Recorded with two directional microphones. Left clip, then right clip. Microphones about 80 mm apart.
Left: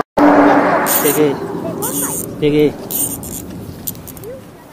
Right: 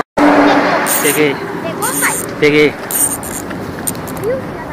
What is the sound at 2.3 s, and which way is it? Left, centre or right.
Speech, right.